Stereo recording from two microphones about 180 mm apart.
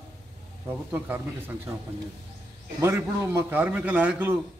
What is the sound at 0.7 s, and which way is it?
A man's voice, 10° right (ahead or behind).